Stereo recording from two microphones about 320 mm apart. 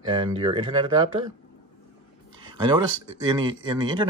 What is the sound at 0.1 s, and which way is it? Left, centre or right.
Speech, centre.